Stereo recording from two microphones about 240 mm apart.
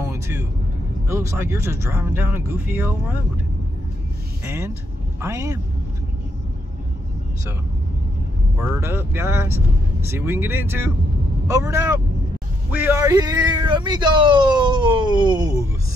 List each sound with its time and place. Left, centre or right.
0.0 s vehicle: centre
1.0 s speech: centre
4.5 s speech: centre
8.5 s speech: centre